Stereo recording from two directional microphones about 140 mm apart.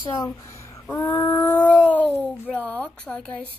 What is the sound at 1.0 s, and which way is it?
Speech, 15° left (ahead or behind).